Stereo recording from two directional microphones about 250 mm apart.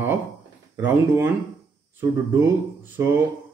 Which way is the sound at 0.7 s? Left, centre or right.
Centre.